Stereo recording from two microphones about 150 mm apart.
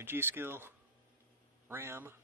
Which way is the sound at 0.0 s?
15° right (ahead or behind).